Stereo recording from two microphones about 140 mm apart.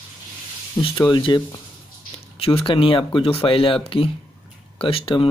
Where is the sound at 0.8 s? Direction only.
35° left (ahead or behind).